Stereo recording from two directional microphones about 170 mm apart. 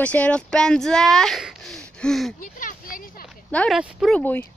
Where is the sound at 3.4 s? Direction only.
10° left (ahead or behind).